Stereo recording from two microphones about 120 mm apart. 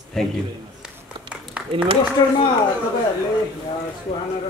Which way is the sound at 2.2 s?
35° left (ahead or behind).